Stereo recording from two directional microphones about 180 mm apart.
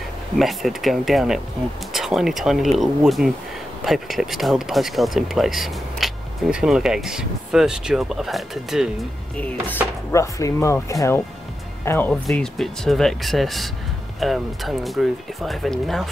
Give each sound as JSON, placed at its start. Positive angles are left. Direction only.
{"t": 0.4, "sound": "speech", "side_deg": 0}
{"t": 9.4, "sound": "speech", "side_deg": 10}
{"t": 12.1, "sound": "speech", "side_deg": 0}